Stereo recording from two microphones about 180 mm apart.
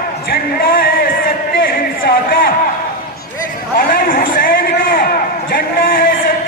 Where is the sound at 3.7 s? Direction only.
55° left (ahead or behind).